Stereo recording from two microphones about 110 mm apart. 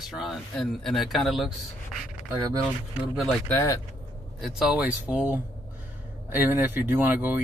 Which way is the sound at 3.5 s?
25° left (ahead or behind).